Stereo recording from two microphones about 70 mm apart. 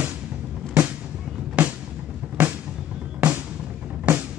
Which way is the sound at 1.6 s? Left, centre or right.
Centre.